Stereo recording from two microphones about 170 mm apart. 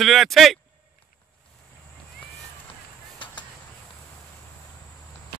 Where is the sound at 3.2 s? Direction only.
30° left (ahead or behind).